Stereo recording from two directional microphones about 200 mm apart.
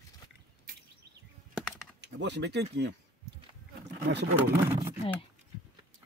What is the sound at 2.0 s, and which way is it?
Speech, 60° right (ahead or behind).